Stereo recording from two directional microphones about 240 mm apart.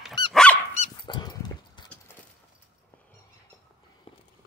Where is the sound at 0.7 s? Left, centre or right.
Left.